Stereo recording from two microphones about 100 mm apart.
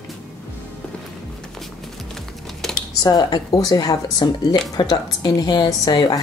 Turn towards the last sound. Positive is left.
turn(degrees=40)  # may be behind; listen again after turning